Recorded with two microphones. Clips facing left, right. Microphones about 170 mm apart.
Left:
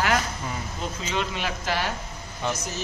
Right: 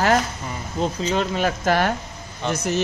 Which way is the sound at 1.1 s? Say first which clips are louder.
Right 5 dB; 40° right (ahead or behind).